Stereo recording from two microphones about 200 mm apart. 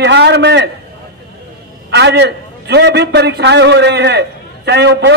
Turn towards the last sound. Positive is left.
turn(degrees=-60)  # may be behind; listen again after turning